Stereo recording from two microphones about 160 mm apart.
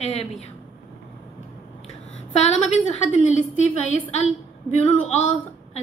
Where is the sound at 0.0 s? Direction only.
45° left (ahead or behind).